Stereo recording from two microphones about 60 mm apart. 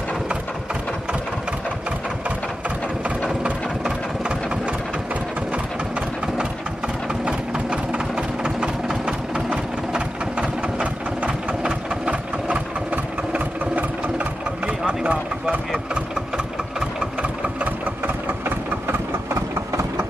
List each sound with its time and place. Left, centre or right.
5.5 s vehicle: centre
7.2 s sewing machine: centre
8.5 s engine: centre
15.0 s a sound: right
18.0 s engine: right